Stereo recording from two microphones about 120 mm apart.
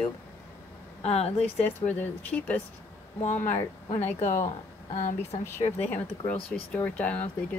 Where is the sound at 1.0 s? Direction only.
60° left (ahead or behind).